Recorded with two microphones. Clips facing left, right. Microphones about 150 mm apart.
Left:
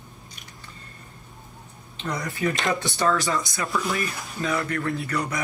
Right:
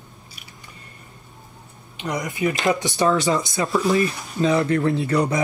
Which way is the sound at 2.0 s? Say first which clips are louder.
Right 4 dB; 15° right (ahead or behind).